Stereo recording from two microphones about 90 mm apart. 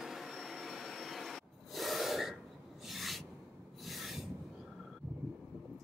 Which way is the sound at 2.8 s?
Centre (ahead or behind).